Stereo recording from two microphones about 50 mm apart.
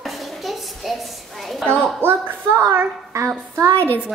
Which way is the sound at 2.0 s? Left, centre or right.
Right.